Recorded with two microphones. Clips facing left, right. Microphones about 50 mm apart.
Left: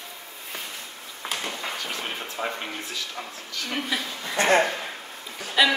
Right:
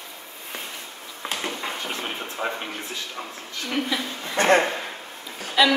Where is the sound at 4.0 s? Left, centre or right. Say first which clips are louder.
Right 2 dB; right.